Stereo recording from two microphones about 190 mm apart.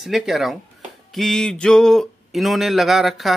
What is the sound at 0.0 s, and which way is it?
Speech, centre (ahead or behind).